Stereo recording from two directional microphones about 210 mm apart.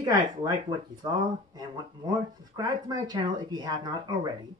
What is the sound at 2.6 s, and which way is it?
Speech, 20° right (ahead or behind).